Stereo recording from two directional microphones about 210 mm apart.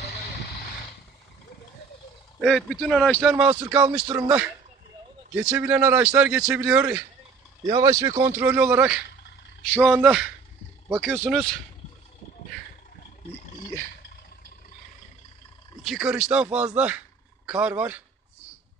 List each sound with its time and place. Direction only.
2.4 s a man's voice: centre (ahead or behind)
7.6 s speech: 20° right (ahead or behind)
9.7 s a man's voice: 5° left (ahead or behind)
15.8 s a man's voice: centre (ahead or behind)